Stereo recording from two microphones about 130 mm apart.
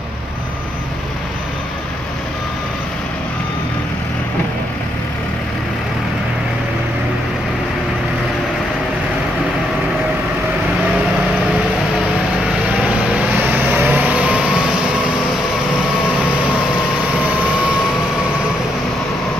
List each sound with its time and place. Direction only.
13.1 s vehicle: 15° right (ahead or behind)